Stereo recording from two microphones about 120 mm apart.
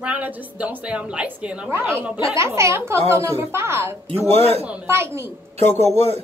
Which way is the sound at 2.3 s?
25° right (ahead or behind).